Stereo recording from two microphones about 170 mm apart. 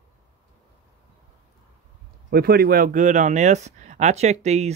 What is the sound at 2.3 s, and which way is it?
Speech, 65° right (ahead or behind).